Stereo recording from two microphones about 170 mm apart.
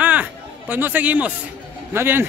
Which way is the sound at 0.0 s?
10° right (ahead or behind).